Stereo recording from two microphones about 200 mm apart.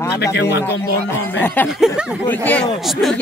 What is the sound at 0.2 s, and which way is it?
Speech, 55° left (ahead or behind).